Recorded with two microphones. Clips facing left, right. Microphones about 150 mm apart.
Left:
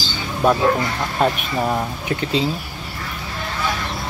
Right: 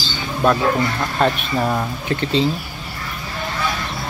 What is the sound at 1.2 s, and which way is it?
Speech, 10° left (ahead or behind).